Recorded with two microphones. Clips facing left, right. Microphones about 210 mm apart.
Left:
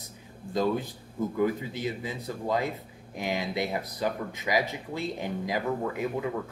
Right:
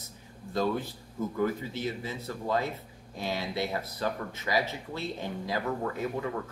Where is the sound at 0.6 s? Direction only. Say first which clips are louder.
Left 2 dB; 15° left (ahead or behind).